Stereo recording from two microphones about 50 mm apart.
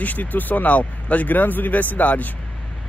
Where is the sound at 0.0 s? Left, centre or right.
Left.